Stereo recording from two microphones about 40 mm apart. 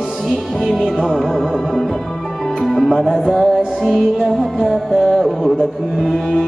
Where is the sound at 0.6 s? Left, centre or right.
Centre.